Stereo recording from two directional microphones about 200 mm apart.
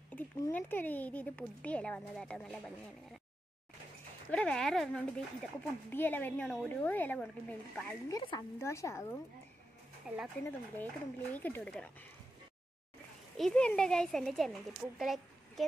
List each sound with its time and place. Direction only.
0.1 s speech: 10° left (ahead or behind)
4.3 s speech: 5° left (ahead or behind)
8.1 s speech: 20° left (ahead or behind)
10.0 s speech: 5° right (ahead or behind)
11.3 s speech: 10° left (ahead or behind)
13.4 s speech: 5° left (ahead or behind)